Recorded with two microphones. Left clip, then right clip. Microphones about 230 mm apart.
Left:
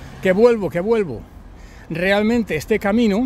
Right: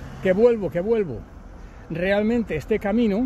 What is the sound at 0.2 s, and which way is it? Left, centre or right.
Speech, left.